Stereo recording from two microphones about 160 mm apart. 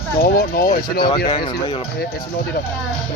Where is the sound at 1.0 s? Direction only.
30° left (ahead or behind).